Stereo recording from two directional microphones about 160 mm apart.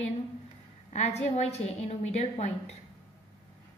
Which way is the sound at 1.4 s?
45° left (ahead or behind).